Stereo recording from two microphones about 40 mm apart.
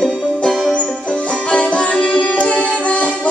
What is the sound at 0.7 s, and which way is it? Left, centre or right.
Music, left.